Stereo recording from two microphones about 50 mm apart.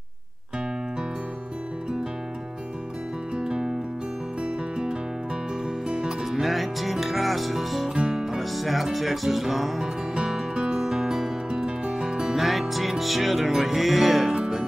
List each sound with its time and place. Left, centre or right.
3.3 s music: centre
6.2 s music: centre
7.9 s music: centre
8.2 s music: centre
10.3 s music: centre